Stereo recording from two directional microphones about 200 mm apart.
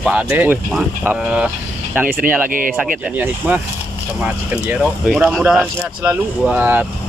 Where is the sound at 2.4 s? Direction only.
45° right (ahead or behind).